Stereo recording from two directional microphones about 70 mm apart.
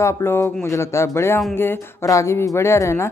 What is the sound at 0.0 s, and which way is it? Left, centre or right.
Speech, left.